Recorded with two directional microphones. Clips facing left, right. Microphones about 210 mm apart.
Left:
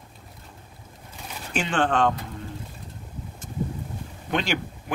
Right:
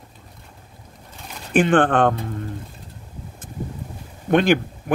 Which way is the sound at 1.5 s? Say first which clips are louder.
Right 8 dB; 55° right (ahead or behind).